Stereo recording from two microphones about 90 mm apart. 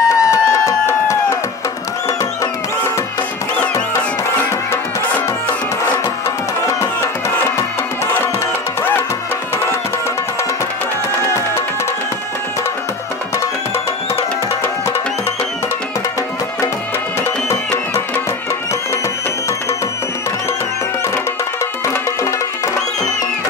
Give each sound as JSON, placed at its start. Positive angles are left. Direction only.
{"t": 0.0, "sound": "music", "side_deg": 35}
{"t": 6.7, "sound": "music", "side_deg": 30}